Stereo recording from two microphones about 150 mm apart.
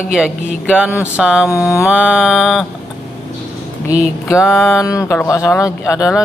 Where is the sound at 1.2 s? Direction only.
5° right (ahead or behind).